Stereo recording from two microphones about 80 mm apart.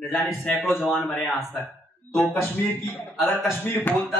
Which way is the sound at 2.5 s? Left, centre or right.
Left.